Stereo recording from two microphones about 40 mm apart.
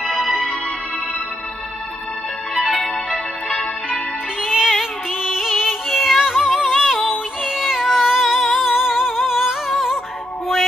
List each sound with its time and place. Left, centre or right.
0.1 s music: centre
2.5 s music: left
4.4 s music: centre
5.2 s yodeling: centre
6.2 s music: centre
7.4 s a sound: centre
8.5 s music: centre